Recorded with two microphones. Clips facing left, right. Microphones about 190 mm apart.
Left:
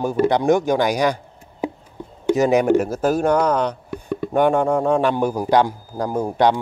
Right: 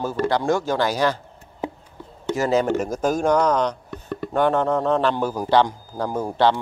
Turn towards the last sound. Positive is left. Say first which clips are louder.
# left 2 dB
turn(degrees=15)  # may be behind; listen again after turning